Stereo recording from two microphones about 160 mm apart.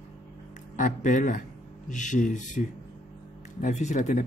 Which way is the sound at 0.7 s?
55° left (ahead or behind).